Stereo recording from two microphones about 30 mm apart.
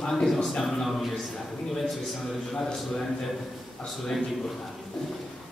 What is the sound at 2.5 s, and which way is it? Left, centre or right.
Speech, centre.